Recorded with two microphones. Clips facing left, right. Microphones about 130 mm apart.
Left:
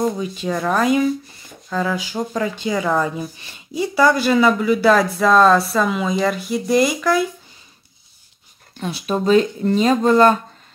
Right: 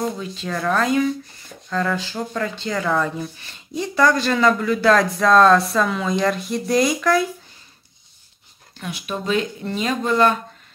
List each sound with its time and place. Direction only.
0.2 s speech: 15° left (ahead or behind)
8.8 s speech: 35° left (ahead or behind)